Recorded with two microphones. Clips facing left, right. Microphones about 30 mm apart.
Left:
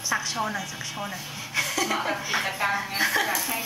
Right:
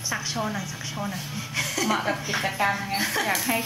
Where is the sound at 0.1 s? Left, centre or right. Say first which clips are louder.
Left 2 dB; centre.